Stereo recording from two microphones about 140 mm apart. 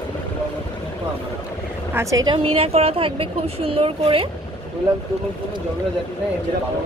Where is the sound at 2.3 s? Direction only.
45° right (ahead or behind).